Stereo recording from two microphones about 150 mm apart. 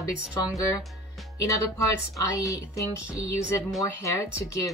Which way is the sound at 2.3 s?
20° left (ahead or behind).